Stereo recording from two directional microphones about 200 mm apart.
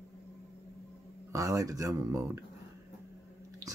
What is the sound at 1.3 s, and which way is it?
Speech, 15° right (ahead or behind).